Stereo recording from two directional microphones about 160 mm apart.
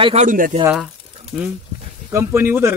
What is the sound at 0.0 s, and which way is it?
Speech, 45° right (ahead or behind).